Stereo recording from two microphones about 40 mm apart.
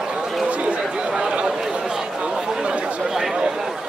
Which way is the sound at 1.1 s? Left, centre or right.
Right.